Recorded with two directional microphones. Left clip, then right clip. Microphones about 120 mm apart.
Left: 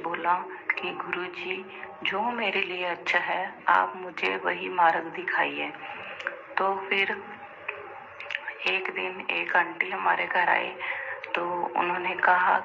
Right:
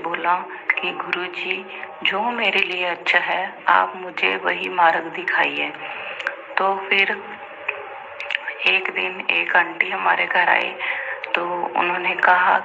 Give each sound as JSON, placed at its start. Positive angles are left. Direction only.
{"t": 0.0, "sound": "speech", "side_deg": -30}
{"t": 6.2, "sound": "a sound", "side_deg": -30}
{"t": 8.3, "sound": "speech", "side_deg": -30}